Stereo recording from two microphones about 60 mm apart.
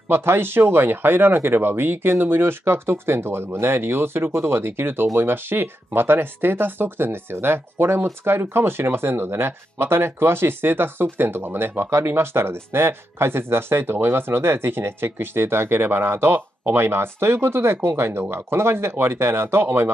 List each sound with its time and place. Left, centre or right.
0.1 s speech: right